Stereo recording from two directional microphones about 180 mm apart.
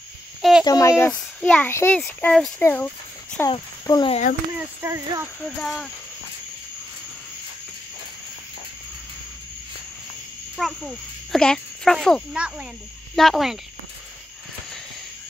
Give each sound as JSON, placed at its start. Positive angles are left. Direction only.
{"t": 0.4, "sound": "a sound", "side_deg": 0}
{"t": 0.7, "sound": "speech", "side_deg": 20}
{"t": 3.4, "sound": "speech", "side_deg": 20}
{"t": 4.1, "sound": "speech", "side_deg": 45}
{"t": 4.8, "sound": "speech", "side_deg": -15}
{"t": 5.4, "sound": "speech", "side_deg": 0}
{"t": 10.6, "sound": "a child's voice", "side_deg": 0}